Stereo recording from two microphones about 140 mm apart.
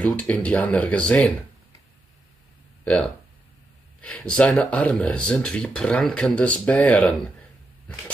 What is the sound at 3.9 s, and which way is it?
Speech, 10° left (ahead or behind).